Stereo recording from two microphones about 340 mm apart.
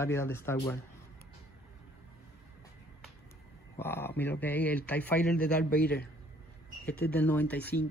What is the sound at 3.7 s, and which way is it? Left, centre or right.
Speech, centre.